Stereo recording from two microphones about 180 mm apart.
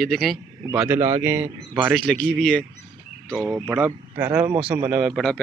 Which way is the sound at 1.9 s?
5° left (ahead or behind).